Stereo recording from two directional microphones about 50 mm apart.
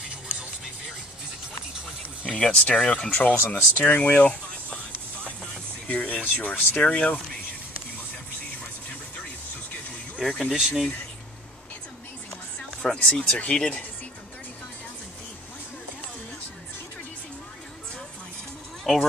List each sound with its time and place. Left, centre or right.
2.2 s speech: left
3.4 s speech: left
5.9 s speech: left
10.2 s speech: centre
10.5 s speech: centre
12.8 s speech: centre
18.9 s speech: centre